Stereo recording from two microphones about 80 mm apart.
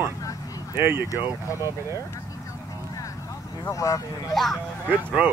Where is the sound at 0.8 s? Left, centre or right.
Right.